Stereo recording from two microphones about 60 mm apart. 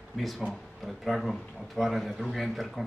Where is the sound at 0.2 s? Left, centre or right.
Centre.